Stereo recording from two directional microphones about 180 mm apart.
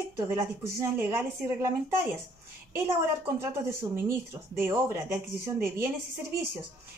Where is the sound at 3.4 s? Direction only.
15° right (ahead or behind).